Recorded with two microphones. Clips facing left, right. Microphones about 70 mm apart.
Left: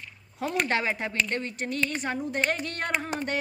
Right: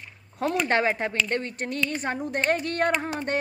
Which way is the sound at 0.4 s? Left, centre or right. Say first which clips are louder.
Right 4 dB; right.